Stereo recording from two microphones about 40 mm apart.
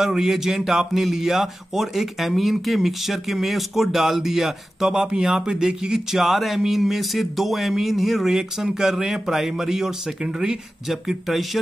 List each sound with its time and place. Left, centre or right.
0.0 s a man's voice: centre